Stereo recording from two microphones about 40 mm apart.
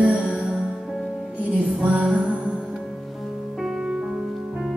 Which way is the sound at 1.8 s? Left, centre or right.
Right.